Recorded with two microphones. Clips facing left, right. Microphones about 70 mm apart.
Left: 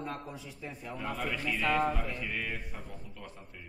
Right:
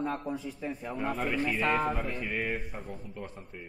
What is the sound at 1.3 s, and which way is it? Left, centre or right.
Mantra, right.